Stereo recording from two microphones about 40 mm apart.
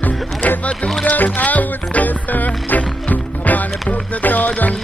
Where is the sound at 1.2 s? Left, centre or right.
Left.